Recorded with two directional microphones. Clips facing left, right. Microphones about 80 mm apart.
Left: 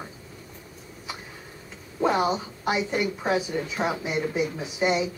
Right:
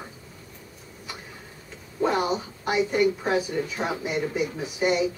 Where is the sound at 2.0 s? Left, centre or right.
Centre.